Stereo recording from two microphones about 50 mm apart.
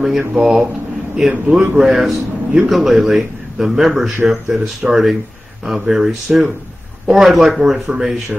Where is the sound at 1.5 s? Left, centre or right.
Centre.